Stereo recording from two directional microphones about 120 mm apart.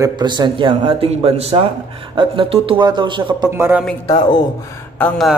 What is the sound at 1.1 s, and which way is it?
A man's voice, 60° right (ahead or behind).